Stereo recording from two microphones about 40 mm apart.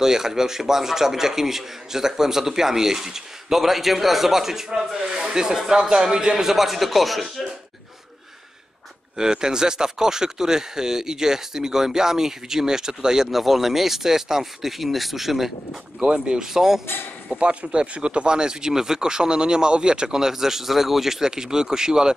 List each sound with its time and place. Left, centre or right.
0.0 s a man's voice: centre
9.1 s a man's voice: centre
16.0 s speech: right
16.3 s a man's voice: centre
17.4 s a man's voice: right